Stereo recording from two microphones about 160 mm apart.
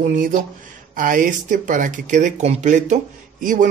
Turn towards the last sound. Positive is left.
turn(degrees=-55)  # may be behind; listen again after turning